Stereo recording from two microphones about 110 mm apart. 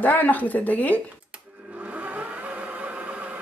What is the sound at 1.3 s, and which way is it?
Blender, 10° right (ahead or behind).